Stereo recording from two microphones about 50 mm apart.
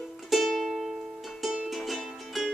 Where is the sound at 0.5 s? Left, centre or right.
Centre.